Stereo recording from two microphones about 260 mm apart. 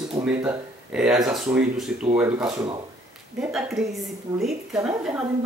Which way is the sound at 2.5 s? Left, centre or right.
Centre.